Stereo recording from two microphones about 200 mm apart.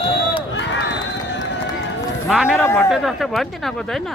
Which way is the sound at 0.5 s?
65° left (ahead or behind).